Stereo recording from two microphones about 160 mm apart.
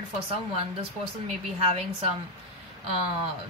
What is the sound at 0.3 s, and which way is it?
Speech, 40° right (ahead or behind).